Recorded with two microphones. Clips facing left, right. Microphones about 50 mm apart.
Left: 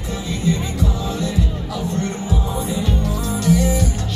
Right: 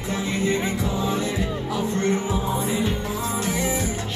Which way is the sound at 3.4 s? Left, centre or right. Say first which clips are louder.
Left 10 dB; right.